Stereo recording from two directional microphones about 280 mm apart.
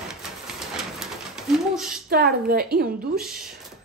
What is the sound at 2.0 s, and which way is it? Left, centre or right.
A woman's voice, right.